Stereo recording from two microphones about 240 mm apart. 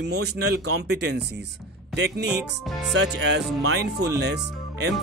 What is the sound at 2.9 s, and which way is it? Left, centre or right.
Speech, right.